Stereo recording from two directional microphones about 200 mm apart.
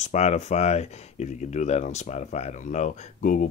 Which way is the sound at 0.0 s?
35° left (ahead or behind).